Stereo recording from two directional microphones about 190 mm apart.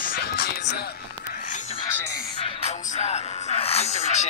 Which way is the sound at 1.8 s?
25° left (ahead or behind).